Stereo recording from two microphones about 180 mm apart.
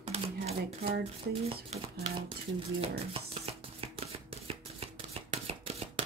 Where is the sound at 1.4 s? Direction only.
35° right (ahead or behind).